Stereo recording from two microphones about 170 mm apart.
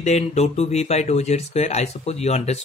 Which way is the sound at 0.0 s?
40° left (ahead or behind).